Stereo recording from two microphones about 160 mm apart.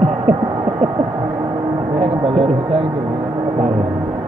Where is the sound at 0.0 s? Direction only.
45° right (ahead or behind).